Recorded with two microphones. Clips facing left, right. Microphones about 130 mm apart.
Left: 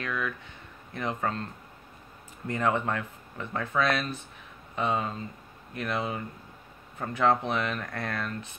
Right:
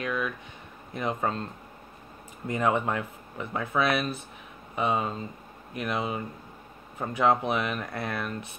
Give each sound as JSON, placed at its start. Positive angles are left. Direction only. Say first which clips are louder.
{"t": 0.0, "sound": "speech", "louder": "right 2 dB", "side_deg": -20}